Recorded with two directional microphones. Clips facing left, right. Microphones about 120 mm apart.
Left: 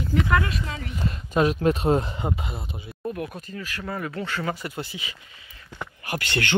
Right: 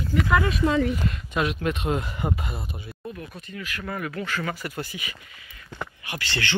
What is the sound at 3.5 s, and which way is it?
Speech, 30° left (ahead or behind).